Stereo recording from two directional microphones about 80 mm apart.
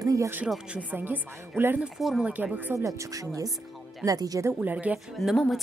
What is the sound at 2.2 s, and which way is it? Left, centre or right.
Speech, centre.